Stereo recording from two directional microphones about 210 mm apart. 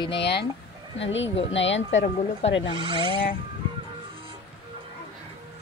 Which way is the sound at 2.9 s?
25° left (ahead or behind).